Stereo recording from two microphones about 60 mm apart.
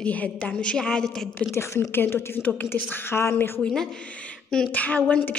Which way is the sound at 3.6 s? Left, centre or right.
Centre.